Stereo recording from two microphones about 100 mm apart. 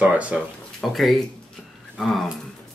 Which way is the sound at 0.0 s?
15° right (ahead or behind).